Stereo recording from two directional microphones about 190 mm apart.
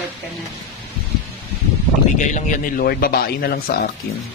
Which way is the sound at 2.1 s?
40° left (ahead or behind).